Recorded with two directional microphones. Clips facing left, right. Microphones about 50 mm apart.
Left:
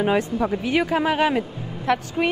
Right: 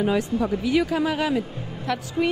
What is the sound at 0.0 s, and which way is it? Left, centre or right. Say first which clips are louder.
A woman's voice: left 2 dB; left.